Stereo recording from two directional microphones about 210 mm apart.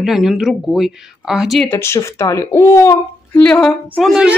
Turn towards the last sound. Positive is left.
turn(degrees=-5)  # may be behind; listen again after turning